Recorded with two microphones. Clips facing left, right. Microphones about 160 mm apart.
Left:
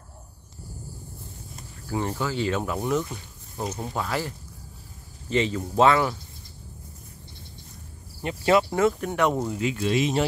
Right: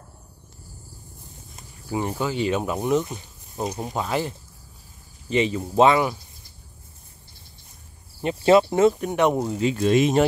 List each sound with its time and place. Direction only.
1.9 s speech: 15° right (ahead or behind)
8.2 s speech: 25° right (ahead or behind)
9.6 s speech: 30° right (ahead or behind)
9.8 s speech: 50° right (ahead or behind)